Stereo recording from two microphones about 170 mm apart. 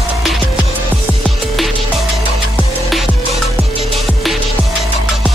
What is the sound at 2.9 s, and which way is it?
Music, centre (ahead or behind).